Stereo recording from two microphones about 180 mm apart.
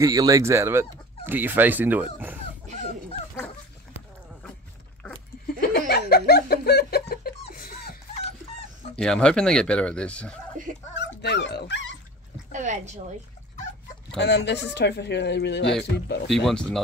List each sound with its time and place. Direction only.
0.0 s speech: 20° right (ahead or behind)
5.6 s a sound: 60° left (ahead or behind)
8.9 s speech: 5° left (ahead or behind)
10.6 s speech: 45° right (ahead or behind)
11.0 s dog: 70° left (ahead or behind)
12.5 s a woman's voice: 40° right (ahead or behind)
14.1 s speech: 70° left (ahead or behind)
16.3 s speech: centre (ahead or behind)